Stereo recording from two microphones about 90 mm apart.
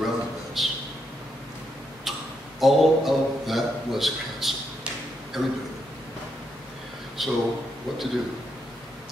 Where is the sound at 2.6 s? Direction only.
Centre (ahead or behind).